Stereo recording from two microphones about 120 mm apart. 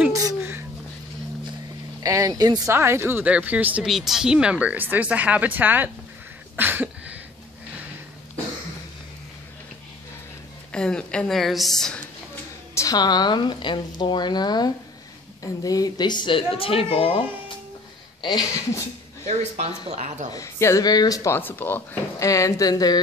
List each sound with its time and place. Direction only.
0.1 s a sound: 30° right (ahead or behind)
2.0 s speech: 30° right (ahead or behind)
2.7 s speech: 20° right (ahead or behind)
3.8 s speech: centre (ahead or behind)
6.5 s a sound: 15° right (ahead or behind)
10.7 s a woman's voice: 5° left (ahead or behind)
12.7 s a woman's voice: 30° left (ahead or behind); by 17.2 s 50° left (ahead or behind)
18.2 s a woman's voice: 30° left (ahead or behind)
19.2 s speech: 65° right (ahead or behind)
20.3 s speech: 25° left (ahead or behind)